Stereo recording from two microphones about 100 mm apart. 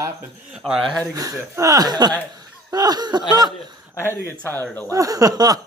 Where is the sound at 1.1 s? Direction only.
35° right (ahead or behind).